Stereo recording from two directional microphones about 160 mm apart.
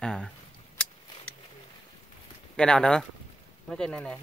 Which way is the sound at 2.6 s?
5° left (ahead or behind).